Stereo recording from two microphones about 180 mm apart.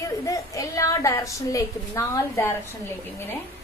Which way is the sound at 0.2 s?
20° left (ahead or behind).